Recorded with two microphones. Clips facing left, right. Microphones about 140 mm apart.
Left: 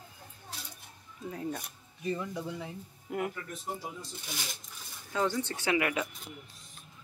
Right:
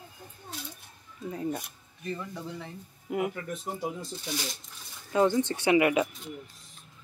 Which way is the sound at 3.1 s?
5° right (ahead or behind).